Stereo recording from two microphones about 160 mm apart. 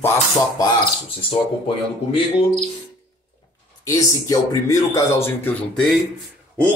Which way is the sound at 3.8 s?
20° left (ahead or behind).